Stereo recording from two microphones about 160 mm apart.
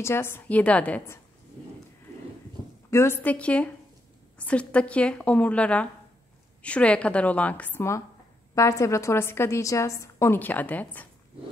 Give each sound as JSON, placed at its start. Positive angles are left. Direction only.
{"t": 0.0, "sound": "a woman's voice", "side_deg": 15}
{"t": 2.9, "sound": "a woman's voice", "side_deg": 15}